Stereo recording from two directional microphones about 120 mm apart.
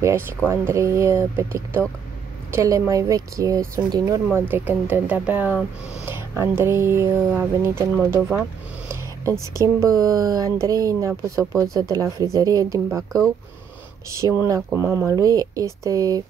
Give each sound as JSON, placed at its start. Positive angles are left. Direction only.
{"t": 0.5, "sound": "speech", "side_deg": -25}
{"t": 9.2, "sound": "speech", "side_deg": -25}
{"t": 14.5, "sound": "speech", "side_deg": -20}